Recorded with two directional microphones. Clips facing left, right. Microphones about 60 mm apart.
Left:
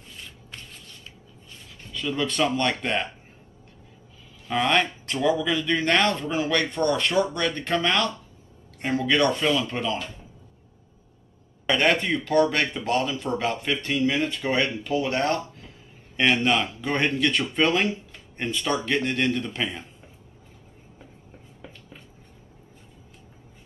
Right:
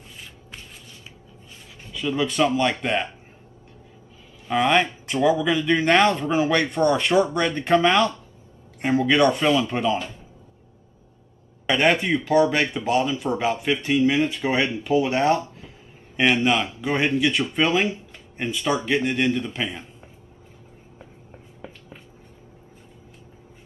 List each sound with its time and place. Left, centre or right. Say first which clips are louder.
0.2 s rub: even; centre
1.8 s speech: right 3 dB; centre
4.5 s speech: right 3 dB; centre
11.6 s speech: right 2 dB; centre
21.5 s a sound: right 4 dB; centre